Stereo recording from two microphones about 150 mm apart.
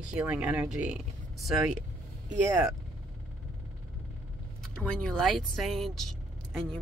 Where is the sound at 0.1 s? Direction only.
5° right (ahead or behind).